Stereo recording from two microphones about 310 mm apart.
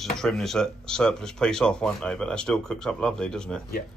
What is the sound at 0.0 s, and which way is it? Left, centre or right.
Speech, centre.